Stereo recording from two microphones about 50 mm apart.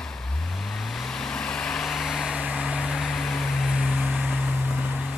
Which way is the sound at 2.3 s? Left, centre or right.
Centre.